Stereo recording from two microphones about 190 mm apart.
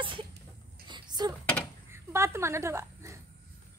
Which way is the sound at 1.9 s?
15° right (ahead or behind).